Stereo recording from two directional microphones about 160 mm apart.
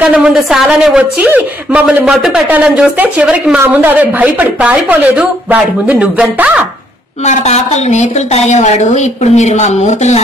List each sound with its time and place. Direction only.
0.1 s a woman's voice: 5° right (ahead or behind)
7.2 s a woman's voice: 45° left (ahead or behind)